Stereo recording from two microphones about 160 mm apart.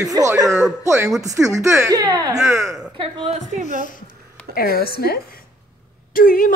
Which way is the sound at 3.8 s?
60° left (ahead or behind).